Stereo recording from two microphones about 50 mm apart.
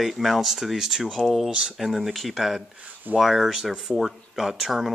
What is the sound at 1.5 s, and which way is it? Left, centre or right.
Speech, centre.